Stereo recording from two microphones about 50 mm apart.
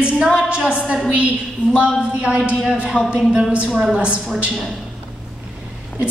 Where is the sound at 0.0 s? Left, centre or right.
Right.